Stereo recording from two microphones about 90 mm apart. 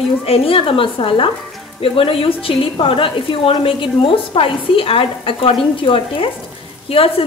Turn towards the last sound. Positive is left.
turn(degrees=90)